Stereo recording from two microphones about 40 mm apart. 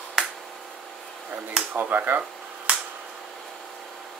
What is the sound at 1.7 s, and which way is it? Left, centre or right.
Speech, right.